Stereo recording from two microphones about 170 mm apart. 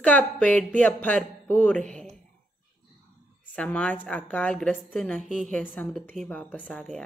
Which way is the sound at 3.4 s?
10° left (ahead or behind).